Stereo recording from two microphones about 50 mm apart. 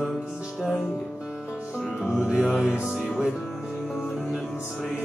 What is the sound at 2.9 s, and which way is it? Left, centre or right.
Music, centre.